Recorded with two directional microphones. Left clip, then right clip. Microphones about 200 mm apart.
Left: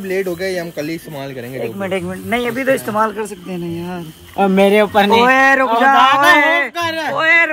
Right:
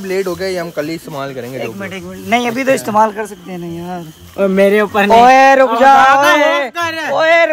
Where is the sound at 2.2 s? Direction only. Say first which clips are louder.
Right 4 dB; 55° right (ahead or behind).